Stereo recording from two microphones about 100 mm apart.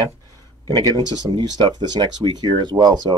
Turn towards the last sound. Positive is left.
turn(degrees=-45)  # may be behind; listen again after turning